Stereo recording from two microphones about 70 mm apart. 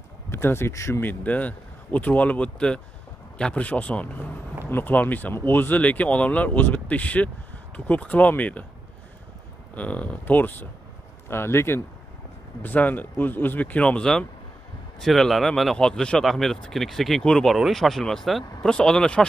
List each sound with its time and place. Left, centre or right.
0.3 s speech: left
1.0 s speech: left
9.8 s speech: left
12.6 s speech: left